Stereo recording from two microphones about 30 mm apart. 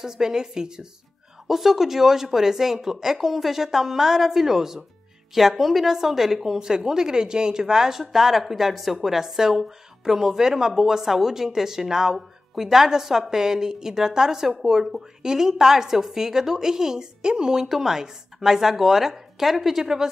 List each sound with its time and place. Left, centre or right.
0.0 s a woman's voice: centre
1.5 s a woman's voice: centre
8.1 s a woman's voice: centre; by 17.6 s right
17.6 s speech: centre